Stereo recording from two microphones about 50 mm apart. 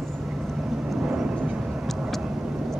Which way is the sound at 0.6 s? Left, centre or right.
Centre.